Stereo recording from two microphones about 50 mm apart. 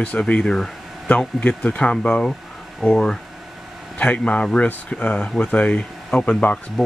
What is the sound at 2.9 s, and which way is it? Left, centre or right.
Speech, centre.